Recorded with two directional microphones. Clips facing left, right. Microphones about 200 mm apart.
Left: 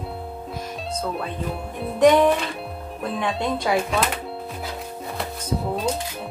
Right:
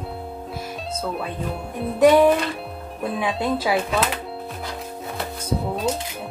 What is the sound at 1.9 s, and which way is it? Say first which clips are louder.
A woman's voice: right 1 dB; 5° right (ahead or behind).